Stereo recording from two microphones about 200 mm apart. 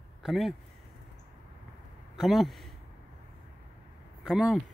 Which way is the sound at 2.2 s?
Centre (ahead or behind).